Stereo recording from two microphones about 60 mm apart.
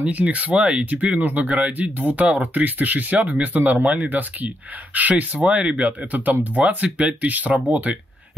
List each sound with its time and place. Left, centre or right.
0.0 s speech: right